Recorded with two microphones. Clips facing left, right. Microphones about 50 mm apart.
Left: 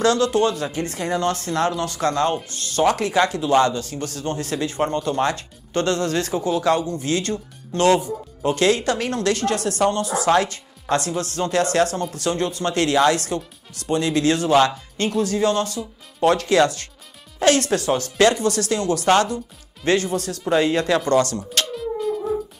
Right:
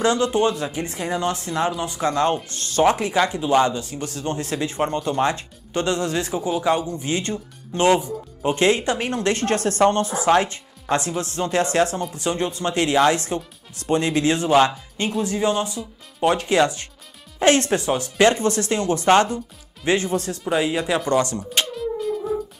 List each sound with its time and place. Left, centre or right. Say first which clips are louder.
0.0 s speech: left 1 dB; centre
20.4 s speech: left 4 dB; centre
21.7 s music: left 1 dB; centre